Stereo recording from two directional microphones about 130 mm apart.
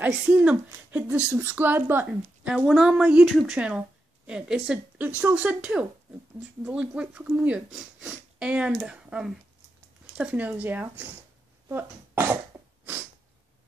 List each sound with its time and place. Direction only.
0.0 s speech: 15° right (ahead or behind)
11.7 s cough: 15° right (ahead or behind)